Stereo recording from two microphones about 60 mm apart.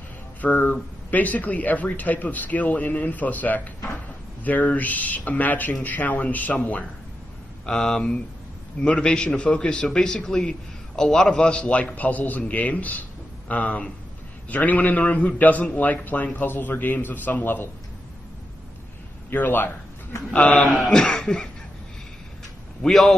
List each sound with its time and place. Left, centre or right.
0.4 s speech: left
7.6 s a man's voice: centre; by 17.6 s left
19.3 s a man's voice: left
20.7 s speech: centre
22.8 s a man's voice: centre